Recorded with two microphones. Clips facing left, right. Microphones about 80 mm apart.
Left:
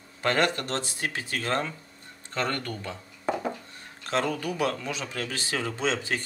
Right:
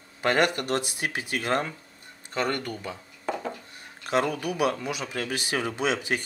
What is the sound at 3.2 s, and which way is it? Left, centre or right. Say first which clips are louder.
Dishes: left 2 dB; centre.